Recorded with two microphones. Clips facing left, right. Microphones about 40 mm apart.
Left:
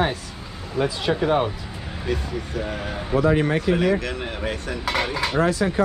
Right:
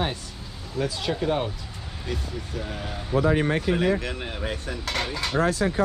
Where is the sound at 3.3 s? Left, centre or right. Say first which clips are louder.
Left 3 dB; left.